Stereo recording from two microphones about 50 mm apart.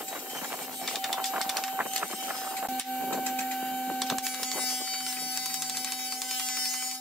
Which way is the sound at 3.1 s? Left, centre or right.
Left.